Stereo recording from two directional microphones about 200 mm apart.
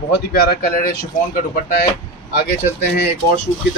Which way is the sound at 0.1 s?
50° left (ahead or behind).